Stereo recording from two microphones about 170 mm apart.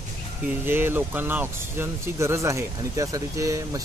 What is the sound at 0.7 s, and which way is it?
Speech, 10° right (ahead or behind).